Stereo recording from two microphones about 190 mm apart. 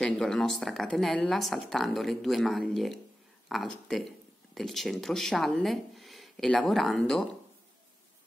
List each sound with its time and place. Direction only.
0.0 s speech: centre (ahead or behind)